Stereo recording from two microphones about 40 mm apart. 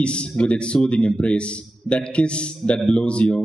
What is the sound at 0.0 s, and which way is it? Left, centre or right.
A man's voice, left.